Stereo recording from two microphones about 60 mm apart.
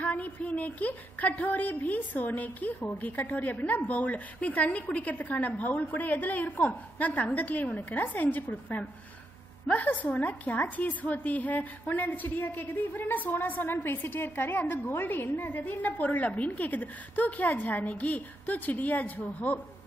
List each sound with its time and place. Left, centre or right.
0.0 s a woman's voice: left